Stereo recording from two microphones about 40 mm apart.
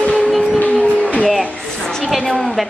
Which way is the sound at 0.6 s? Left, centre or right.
Left.